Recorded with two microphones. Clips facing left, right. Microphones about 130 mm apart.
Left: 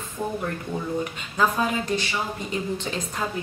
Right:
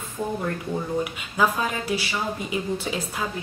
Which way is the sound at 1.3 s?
10° right (ahead or behind).